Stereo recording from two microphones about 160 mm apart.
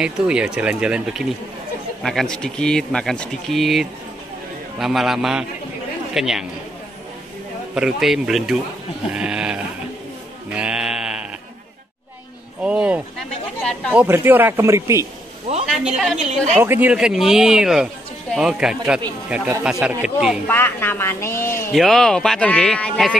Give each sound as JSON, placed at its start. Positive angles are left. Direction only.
{"t": 0.0, "sound": "speech", "side_deg": -5}
{"t": 7.7, "sound": "speech", "side_deg": -5}
{"t": 10.5, "sound": "sheep", "side_deg": -5}
{"t": 12.6, "sound": "a sound", "side_deg": -5}
{"t": 13.6, "sound": "speech", "side_deg": 5}
{"t": 13.9, "sound": "speech", "side_deg": -15}
{"t": 15.6, "sound": "a woman's voice", "side_deg": -5}
{"t": 16.5, "sound": "speech", "side_deg": -15}
{"t": 20.4, "sound": "speech", "side_deg": 10}
{"t": 21.7, "sound": "speech", "side_deg": 0}